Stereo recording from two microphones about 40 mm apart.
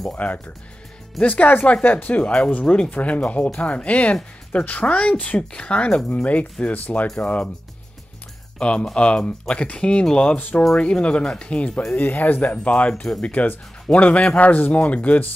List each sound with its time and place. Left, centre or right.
0.2 s speech: left
2.6 s speech: left
2.9 s speech: left
8.5 s speech: left
10.3 s speech: left
10.8 s speech: left
11.9 s speech: left